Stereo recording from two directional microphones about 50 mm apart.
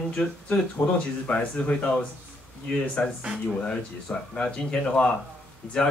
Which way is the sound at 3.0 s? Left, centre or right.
Left.